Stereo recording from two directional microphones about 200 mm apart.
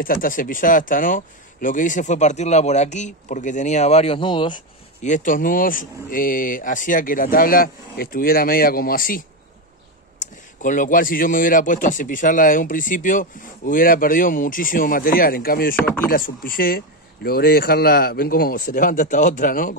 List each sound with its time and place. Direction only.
0.0 s speech: 45° left (ahead or behind); by 4.6 s 25° left (ahead or behind)
5.0 s speech: 40° left (ahead or behind)
10.2 s speech: 40° left (ahead or behind)
15.7 s speech: 10° left (ahead or behind)
16.1 s speech: 45° left (ahead or behind)